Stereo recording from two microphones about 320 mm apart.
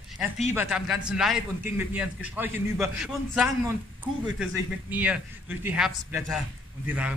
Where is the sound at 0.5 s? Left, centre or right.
Centre.